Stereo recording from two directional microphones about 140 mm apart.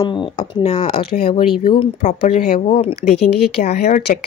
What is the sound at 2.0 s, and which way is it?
Speech, 60° left (ahead or behind).